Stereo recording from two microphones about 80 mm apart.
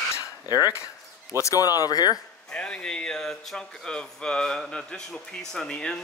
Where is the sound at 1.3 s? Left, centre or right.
Left.